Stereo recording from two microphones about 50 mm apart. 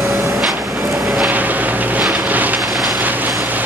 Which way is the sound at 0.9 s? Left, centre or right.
Centre.